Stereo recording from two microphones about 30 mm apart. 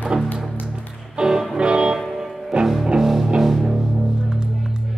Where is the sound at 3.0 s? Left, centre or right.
Centre.